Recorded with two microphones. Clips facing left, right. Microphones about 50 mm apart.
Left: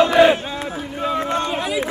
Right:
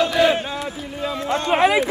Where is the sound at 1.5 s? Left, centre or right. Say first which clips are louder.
Right 7 dB; right.